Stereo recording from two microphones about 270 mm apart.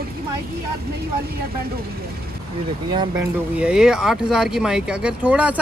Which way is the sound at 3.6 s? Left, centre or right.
Centre.